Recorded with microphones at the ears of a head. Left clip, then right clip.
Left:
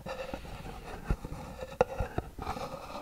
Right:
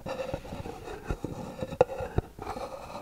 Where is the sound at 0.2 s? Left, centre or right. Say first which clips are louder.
Right 5 dB; right.